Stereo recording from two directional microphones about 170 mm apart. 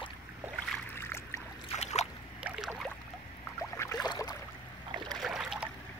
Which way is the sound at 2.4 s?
5° right (ahead or behind).